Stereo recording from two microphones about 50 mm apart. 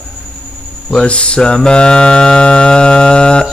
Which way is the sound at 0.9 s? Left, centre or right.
Centre.